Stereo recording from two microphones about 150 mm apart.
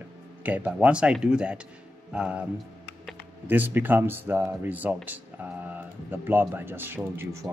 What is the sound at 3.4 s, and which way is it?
Speech, 10° right (ahead or behind).